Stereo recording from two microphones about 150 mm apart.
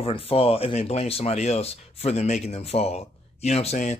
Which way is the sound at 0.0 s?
40° left (ahead or behind).